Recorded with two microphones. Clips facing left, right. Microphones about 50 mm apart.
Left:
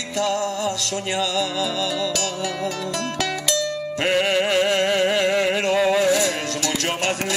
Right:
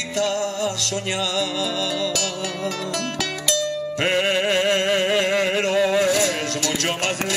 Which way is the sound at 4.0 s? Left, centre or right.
Right.